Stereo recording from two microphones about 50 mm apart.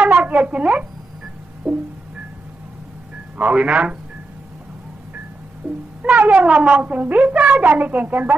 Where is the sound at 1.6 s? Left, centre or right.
Centre.